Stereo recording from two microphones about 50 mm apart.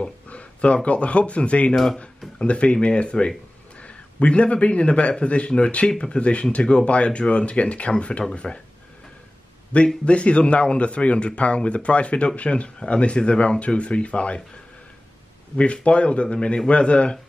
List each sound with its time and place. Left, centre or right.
0.3 s a sound: left
0.8 s speech: left
9.7 s speech: left
15.5 s speech: left